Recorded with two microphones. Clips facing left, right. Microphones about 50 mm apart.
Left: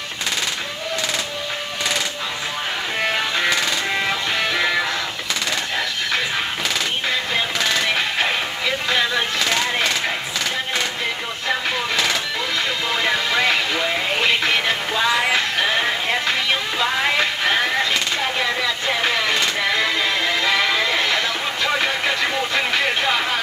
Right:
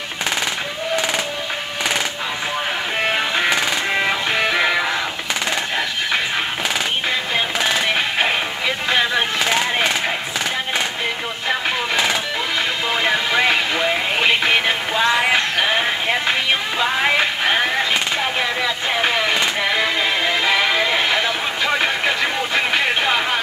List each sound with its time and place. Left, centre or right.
3.0 s music: centre
7.3 s music: centre
12.9 s vehicle: centre